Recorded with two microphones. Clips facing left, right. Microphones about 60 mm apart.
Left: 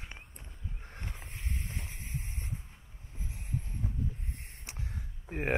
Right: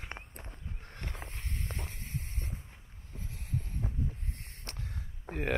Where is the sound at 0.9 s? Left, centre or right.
Centre.